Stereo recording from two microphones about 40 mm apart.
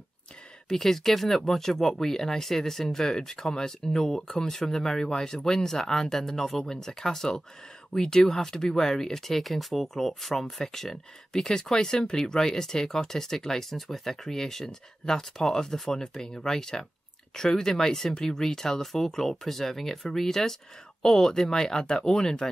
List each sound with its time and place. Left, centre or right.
0.7 s speech: centre